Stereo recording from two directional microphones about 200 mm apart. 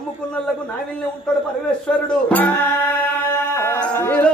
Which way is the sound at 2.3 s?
10° left (ahead or behind).